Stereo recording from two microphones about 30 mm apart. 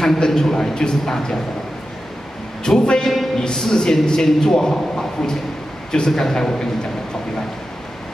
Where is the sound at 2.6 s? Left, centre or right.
Left.